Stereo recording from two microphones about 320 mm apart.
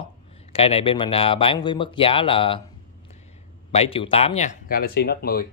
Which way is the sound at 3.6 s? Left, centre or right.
Centre.